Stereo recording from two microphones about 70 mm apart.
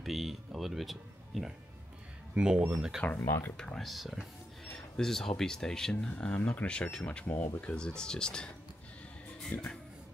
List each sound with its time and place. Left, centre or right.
0.0 s speech: centre
2.3 s speech: centre
3.2 s speech: left
3.5 s speech: centre
7.1 s speech: left
7.6 s speech: centre
9.5 s speech: left